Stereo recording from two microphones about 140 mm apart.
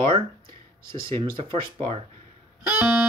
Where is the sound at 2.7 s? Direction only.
15° right (ahead or behind).